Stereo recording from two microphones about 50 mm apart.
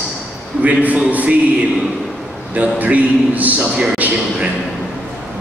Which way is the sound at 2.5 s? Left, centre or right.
Right.